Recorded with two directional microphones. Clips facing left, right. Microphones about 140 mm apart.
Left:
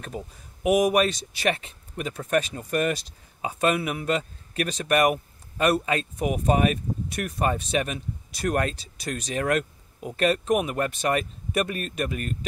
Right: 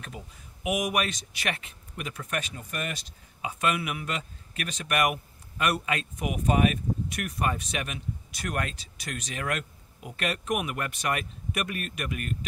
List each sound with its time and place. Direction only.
0.7 s speech: 35° left (ahead or behind)